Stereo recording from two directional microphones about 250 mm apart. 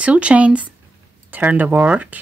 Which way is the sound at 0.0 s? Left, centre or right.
Centre.